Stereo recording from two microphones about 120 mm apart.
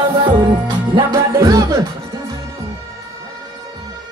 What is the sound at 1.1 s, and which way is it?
Music, 25° right (ahead or behind).